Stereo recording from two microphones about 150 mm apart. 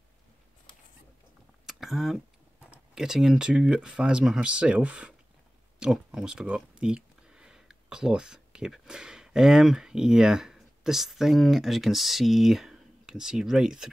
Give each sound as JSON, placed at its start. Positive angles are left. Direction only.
{"t": 1.7, "sound": "speech", "side_deg": 0}